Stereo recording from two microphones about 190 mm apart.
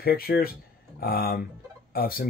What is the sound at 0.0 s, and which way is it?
Speech, 55° left (ahead or behind).